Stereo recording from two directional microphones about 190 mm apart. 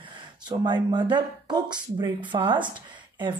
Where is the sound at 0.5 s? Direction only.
20° right (ahead or behind).